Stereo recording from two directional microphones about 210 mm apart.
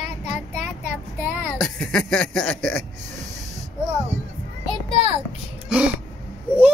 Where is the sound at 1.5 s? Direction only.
Centre (ahead or behind).